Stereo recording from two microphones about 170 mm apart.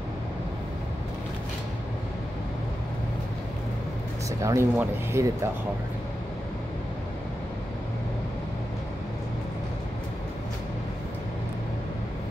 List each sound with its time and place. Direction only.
4.4 s speech: 15° right (ahead or behind)